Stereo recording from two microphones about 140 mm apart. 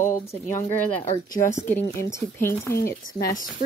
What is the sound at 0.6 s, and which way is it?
Speech, 45° left (ahead or behind).